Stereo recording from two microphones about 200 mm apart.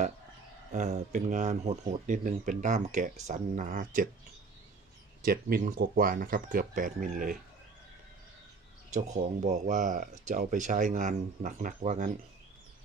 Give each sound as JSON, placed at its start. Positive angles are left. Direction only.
{"t": 0.7, "sound": "speech", "side_deg": -35}
{"t": 5.2, "sound": "speech", "side_deg": -45}
{"t": 8.9, "sound": "speech", "side_deg": -35}